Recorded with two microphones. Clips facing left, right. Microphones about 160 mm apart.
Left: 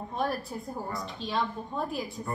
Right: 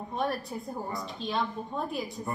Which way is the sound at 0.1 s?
Centre (ahead or behind).